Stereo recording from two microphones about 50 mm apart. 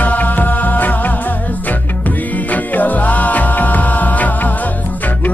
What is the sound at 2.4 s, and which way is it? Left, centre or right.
Music, left.